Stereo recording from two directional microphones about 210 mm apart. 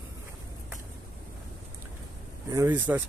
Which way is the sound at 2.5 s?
10° right (ahead or behind).